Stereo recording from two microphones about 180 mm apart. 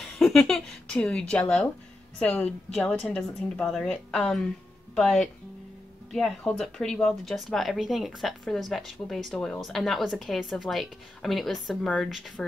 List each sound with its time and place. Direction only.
0.0 s speech: centre (ahead or behind)